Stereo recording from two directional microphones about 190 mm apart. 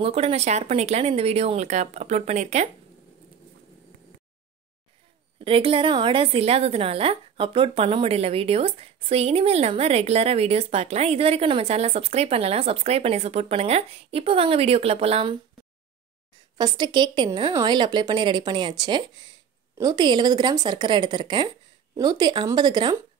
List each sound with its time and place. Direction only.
0.0 s a woman's voice: 30° right (ahead or behind)
5.4 s a woman's voice: 30° right (ahead or behind)
16.5 s a woman's voice: 20° right (ahead or behind)